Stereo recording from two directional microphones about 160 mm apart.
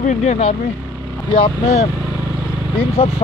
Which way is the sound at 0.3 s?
50° left (ahead or behind).